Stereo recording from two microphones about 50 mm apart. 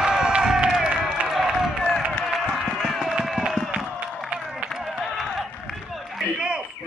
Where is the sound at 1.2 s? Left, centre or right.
Centre.